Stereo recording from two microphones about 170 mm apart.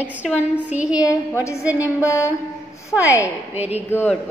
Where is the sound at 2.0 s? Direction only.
20° left (ahead or behind).